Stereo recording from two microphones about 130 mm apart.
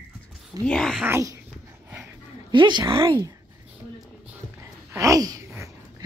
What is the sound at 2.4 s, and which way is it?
Speech, 35° right (ahead or behind).